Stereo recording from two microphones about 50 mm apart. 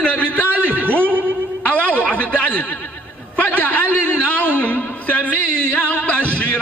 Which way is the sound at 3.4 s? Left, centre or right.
Left.